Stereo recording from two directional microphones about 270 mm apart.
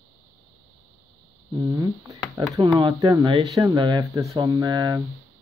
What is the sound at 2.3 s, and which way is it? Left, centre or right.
Speech, centre.